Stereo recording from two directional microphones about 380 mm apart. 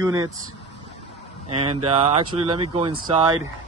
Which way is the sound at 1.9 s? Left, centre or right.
Centre.